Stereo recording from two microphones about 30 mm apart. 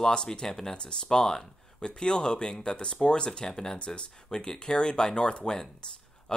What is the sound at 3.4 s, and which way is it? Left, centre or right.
Speech, left.